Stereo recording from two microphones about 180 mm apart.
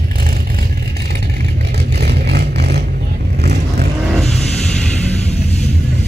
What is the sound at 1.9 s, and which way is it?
Vehicle, 65° right (ahead or behind).